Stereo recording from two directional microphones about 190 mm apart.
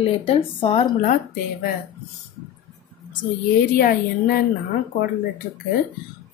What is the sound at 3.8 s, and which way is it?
Speech, 50° left (ahead or behind).